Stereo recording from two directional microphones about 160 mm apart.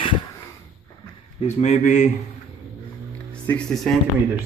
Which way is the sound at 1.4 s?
45° left (ahead or behind).